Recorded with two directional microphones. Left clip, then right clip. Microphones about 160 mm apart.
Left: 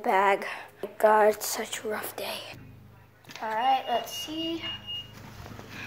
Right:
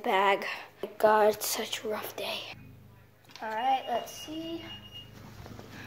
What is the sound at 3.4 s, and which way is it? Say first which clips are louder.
Speech: left 3 dB; 35° right (ahead or behind).